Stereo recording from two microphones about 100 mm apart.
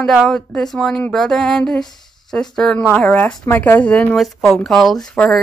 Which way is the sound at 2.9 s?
15° left (ahead or behind).